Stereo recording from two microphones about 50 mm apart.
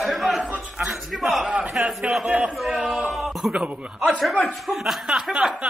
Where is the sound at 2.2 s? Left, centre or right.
Right.